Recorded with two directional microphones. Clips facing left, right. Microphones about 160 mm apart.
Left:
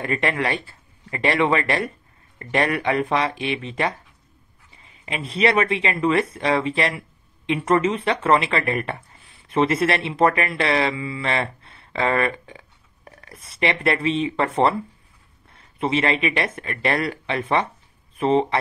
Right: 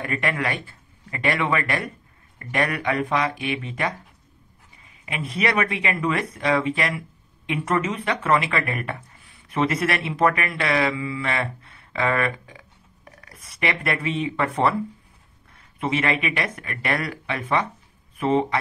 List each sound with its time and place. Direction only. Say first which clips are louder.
0.0 s speech: left 3 dB; 25° left (ahead or behind)
5.0 s speech: left 4 dB; 30° left (ahead or behind)